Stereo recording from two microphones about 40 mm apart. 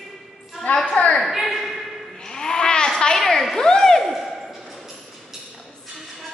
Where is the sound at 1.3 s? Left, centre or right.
Centre.